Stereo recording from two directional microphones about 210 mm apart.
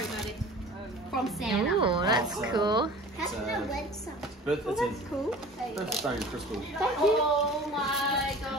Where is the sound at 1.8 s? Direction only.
25° right (ahead or behind).